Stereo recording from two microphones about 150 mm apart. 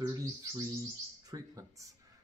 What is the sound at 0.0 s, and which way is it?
Speech, 25° right (ahead or behind).